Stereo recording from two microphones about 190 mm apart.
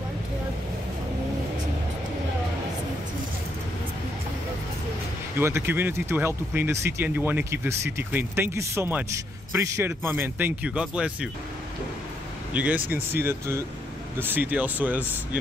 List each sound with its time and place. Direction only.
5.4 s speech: 10° right (ahead or behind)
12.5 s speech: 5° right (ahead or behind)